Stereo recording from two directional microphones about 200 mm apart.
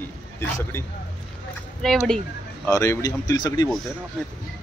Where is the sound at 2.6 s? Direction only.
15° left (ahead or behind).